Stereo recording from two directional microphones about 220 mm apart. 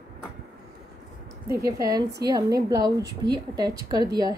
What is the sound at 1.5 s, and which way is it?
A woman's voice, 15° right (ahead or behind).